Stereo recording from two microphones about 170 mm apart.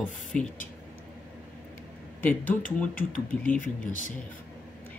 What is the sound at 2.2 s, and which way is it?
Speech, 10° left (ahead or behind).